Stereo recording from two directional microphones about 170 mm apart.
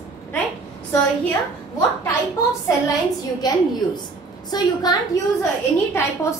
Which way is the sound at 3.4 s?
25° left (ahead or behind).